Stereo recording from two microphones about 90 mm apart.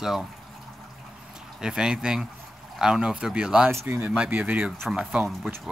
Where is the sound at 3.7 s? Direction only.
30° right (ahead or behind).